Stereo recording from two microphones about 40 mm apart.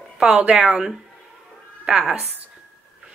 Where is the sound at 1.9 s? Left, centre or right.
Centre.